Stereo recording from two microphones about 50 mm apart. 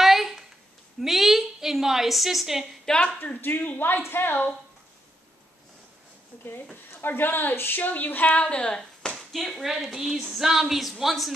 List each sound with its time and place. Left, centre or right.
0.0 s a sound: centre
2.9 s a woman's voice: centre
3.3 s a woman's voice: left
6.9 s a woman's voice: left
7.9 s speech: left
8.4 s speech: centre
9.3 s a woman's voice: centre